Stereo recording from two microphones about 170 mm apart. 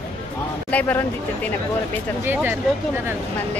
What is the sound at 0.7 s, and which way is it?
Speech, 10° left (ahead or behind).